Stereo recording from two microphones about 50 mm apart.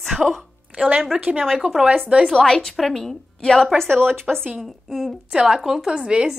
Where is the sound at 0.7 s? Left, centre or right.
Right.